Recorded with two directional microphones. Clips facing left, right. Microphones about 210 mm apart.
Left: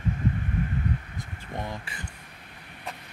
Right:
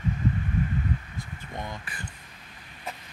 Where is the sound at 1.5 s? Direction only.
30° left (ahead or behind).